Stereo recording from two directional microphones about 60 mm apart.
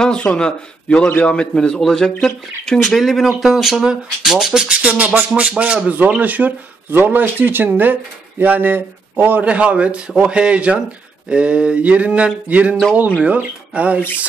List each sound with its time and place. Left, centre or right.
0.0 s a man's voice: centre
3.8 s a sound: centre
4.6 s a man's voice: right
9.5 s a man's voice: right
11.2 s a sound: centre
12.4 s a man's voice: right